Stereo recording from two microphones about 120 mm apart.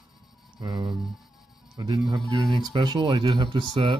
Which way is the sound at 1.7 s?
35° right (ahead or behind).